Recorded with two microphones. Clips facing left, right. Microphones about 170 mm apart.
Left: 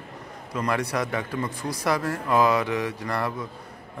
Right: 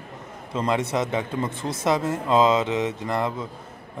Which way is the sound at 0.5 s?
25° right (ahead or behind).